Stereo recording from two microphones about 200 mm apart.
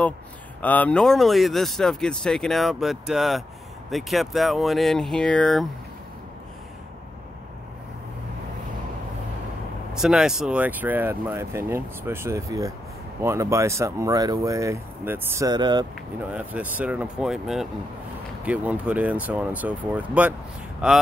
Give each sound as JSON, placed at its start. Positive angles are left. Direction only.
{"t": 0.6, "sound": "speech", "side_deg": 10}
{"t": 9.9, "sound": "speech", "side_deg": -5}
{"t": 16.3, "sound": "speech", "side_deg": -5}